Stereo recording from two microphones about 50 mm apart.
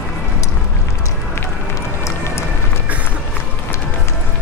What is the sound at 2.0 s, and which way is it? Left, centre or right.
Run, left.